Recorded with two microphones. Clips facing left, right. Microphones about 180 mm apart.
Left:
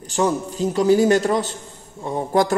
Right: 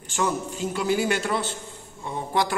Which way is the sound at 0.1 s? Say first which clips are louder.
Left 5 dB; 35° left (ahead or behind).